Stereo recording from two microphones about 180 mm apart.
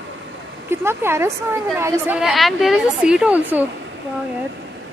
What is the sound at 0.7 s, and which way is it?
A woman's voice, 15° right (ahead or behind).